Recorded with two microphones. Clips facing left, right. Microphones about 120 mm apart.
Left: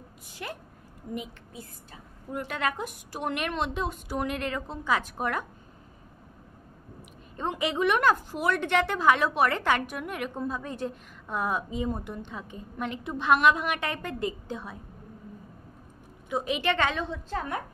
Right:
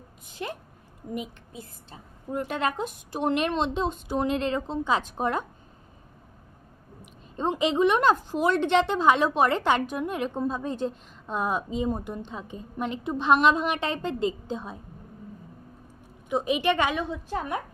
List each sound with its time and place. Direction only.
0.4 s a woman's voice: 25° right (ahead or behind)
7.3 s a woman's voice: 20° right (ahead or behind)
16.3 s a woman's voice: 20° right (ahead or behind)